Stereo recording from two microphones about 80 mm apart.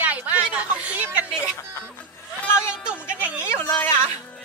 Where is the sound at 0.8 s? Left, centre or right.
Centre.